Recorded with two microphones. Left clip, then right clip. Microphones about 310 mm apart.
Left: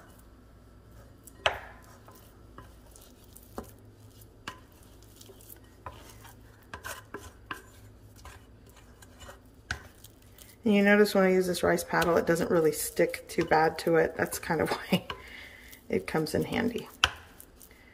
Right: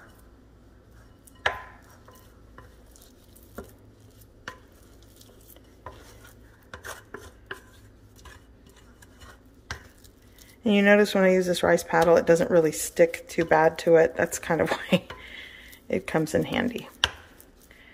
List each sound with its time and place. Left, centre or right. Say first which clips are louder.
10.6 s speech: right 4 dB; centre